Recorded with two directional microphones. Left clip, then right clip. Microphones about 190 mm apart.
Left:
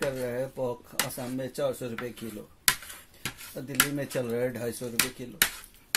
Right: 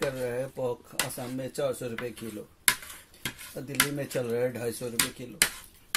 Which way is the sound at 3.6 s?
15° right (ahead or behind).